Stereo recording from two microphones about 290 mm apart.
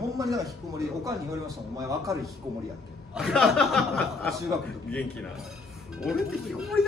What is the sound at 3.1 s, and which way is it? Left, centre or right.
A man's voice, centre.